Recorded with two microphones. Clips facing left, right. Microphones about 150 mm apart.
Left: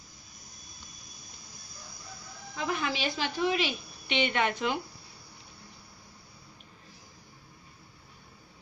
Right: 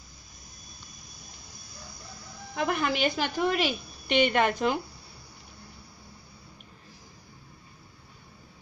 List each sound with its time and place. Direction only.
2.5 s a woman's voice: 60° right (ahead or behind); by 4.7 s 40° right (ahead or behind)